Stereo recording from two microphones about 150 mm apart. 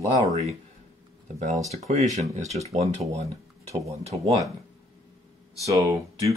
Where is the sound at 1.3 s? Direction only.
55° right (ahead or behind).